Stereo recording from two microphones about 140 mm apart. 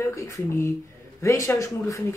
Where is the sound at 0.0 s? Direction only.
20° left (ahead or behind).